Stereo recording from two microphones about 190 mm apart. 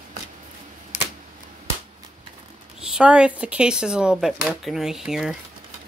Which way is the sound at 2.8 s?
5° right (ahead or behind).